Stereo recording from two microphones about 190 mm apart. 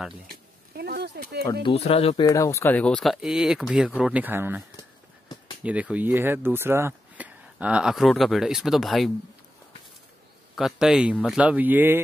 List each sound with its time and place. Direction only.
0.3 s a sound: 55° right (ahead or behind)
1.5 s speech: 25° left (ahead or behind)
2.2 s speech: 15° left (ahead or behind); by 9.1 s centre (ahead or behind)
10.5 s speech: centre (ahead or behind)